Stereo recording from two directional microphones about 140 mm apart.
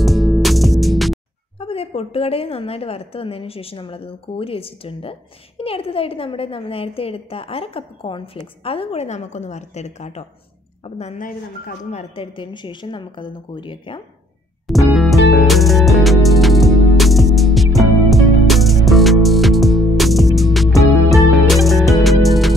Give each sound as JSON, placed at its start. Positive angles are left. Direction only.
{"t": 0.0, "sound": "music", "side_deg": 0}
{"t": 1.6, "sound": "a woman's voice", "side_deg": 45}
{"t": 11.1, "sound": "speech", "side_deg": 85}
{"t": 11.9, "sound": "a woman's voice", "side_deg": 50}
{"t": 12.4, "sound": "speech", "side_deg": 35}
{"t": 14.7, "sound": "music", "side_deg": 0}